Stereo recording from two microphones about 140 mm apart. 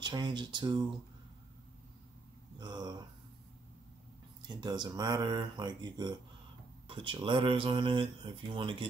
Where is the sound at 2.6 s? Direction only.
30° right (ahead or behind).